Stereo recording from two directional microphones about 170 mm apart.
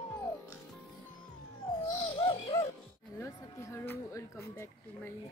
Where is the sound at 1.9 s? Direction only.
30° left (ahead or behind).